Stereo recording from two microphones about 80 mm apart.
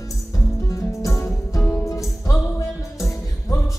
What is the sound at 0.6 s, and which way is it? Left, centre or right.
Music, left.